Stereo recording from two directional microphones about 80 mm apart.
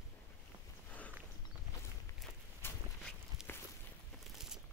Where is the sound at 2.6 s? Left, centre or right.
Left.